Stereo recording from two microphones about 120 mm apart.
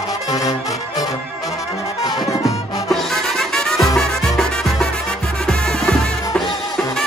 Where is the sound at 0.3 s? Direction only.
30° left (ahead or behind).